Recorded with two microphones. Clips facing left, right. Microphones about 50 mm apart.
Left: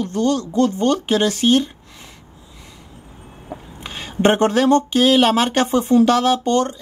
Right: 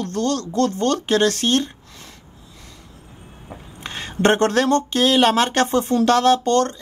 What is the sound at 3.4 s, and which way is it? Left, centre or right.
Speech, centre.